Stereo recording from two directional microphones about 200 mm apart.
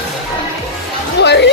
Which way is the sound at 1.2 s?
60° left (ahead or behind).